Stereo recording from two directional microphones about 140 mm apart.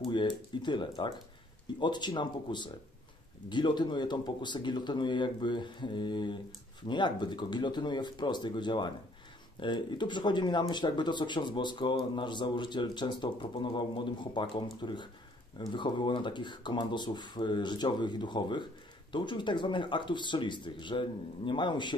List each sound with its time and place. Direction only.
0.1 s speech: 35° left (ahead or behind)